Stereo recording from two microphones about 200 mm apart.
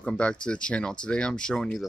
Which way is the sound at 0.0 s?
5° left (ahead or behind).